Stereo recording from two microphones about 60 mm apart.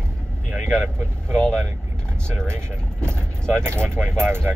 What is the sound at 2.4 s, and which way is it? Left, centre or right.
Speech, right.